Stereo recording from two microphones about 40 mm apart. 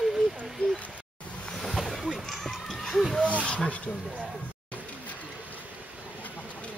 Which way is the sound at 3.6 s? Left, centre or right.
Left.